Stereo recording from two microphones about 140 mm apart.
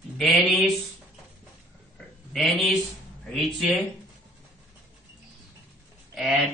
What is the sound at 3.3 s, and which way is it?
Speech, centre (ahead or behind).